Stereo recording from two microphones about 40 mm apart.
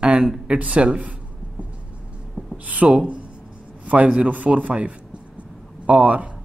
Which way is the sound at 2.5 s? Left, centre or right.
Right.